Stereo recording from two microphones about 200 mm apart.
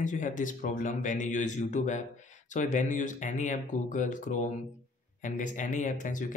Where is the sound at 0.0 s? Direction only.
40° left (ahead or behind).